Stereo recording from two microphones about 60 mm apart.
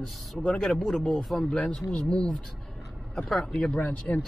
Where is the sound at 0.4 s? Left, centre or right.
Centre.